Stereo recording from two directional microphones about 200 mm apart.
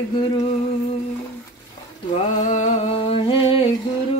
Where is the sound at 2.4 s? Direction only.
35° left (ahead or behind).